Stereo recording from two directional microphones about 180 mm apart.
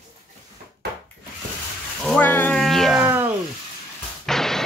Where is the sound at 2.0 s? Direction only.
5° left (ahead or behind); by 3.3 s 10° right (ahead or behind).